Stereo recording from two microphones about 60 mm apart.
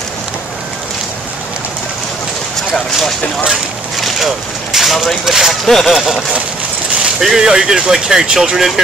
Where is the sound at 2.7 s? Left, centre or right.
Centre.